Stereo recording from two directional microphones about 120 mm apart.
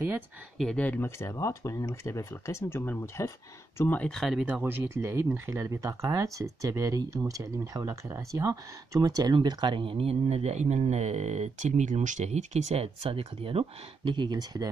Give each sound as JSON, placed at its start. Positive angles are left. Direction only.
{"t": 0.6, "sound": "speech", "side_deg": 10}
{"t": 4.6, "sound": "speech", "side_deg": -20}